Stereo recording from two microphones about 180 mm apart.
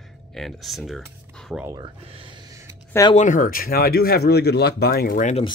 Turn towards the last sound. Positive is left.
turn(degrees=45)  # may be behind; listen again after turning